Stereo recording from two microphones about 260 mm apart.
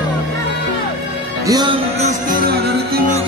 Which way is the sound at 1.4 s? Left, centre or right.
Centre.